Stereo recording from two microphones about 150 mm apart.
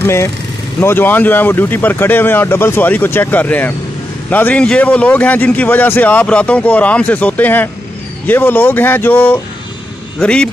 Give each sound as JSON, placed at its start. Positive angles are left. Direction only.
{"t": 0.0, "sound": "a man's voice", "side_deg": 15}